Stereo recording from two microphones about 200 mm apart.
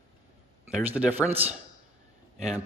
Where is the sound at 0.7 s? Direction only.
5° right (ahead or behind).